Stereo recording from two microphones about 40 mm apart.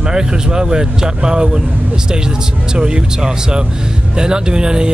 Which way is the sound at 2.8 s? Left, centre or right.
Right.